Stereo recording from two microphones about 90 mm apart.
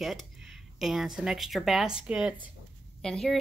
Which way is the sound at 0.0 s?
Centre (ahead or behind).